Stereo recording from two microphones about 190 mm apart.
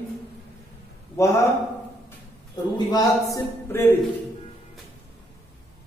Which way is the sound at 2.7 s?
20° left (ahead or behind).